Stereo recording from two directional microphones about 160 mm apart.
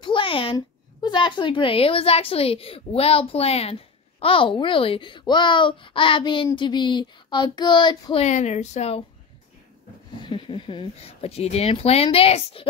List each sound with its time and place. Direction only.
0.0 s a sound: 30° left (ahead or behind)
0.6 s a woman's voice: 30° left (ahead or behind)
8.2 s speech: 45° left (ahead or behind)
10.2 s a woman's voice: 30° left (ahead or behind)